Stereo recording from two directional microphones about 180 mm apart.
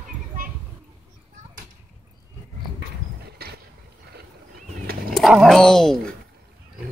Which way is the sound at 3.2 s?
60° right (ahead or behind).